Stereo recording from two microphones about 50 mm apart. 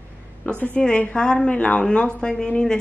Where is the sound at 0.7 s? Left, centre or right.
Left.